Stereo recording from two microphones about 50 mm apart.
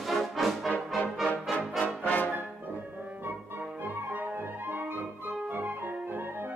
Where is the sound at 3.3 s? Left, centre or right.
Right.